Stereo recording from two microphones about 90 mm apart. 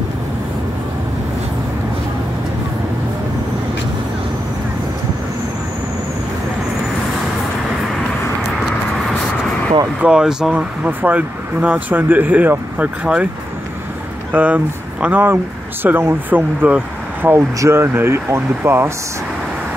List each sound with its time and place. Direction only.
8.4 s vehicle: centre (ahead or behind)
10.0 s speech: 10° right (ahead or behind)
10.5 s speech: 20° right (ahead or behind)
14.3 s speech: 15° right (ahead or behind)
17.6 s speech: 30° right (ahead or behind)